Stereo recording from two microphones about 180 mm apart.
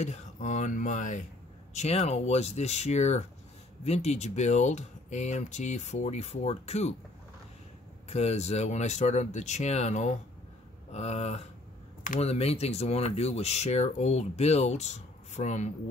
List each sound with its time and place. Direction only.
0.0 s speech: 40° left (ahead or behind)
8.1 s speech: 35° left (ahead or behind)